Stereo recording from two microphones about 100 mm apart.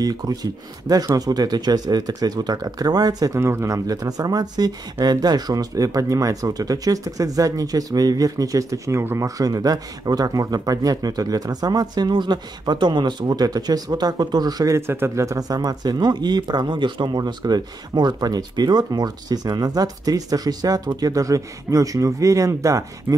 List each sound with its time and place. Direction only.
0.0 s speech: 40° right (ahead or behind)
3.3 s speech: 30° right (ahead or behind)